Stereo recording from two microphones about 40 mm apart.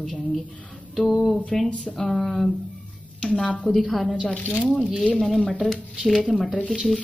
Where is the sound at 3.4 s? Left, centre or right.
Left.